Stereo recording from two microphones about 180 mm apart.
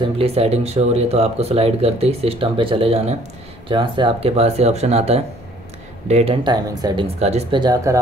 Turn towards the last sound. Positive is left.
turn(degrees=-20)  # may be behind; listen again after turning